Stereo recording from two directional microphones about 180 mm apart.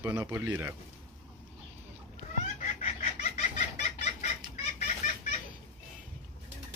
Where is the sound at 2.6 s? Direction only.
40° left (ahead or behind).